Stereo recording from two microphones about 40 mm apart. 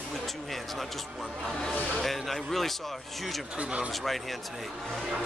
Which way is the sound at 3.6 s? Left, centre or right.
Right.